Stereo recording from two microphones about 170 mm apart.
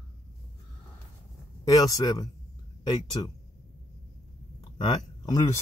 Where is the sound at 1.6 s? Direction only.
20° left (ahead or behind).